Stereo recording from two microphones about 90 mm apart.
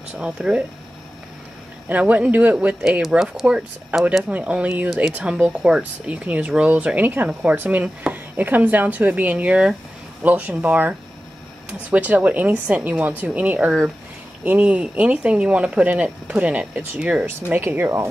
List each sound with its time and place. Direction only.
0.1 s speech: 10° right (ahead or behind)
1.9 s speech: 15° right (ahead or behind)
3.0 s speech: centre (ahead or behind)
4.8 s speech: 5° right (ahead or behind); by 18.0 s 25° right (ahead or behind)